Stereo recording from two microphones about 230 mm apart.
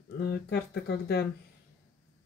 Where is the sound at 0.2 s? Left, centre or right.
Left.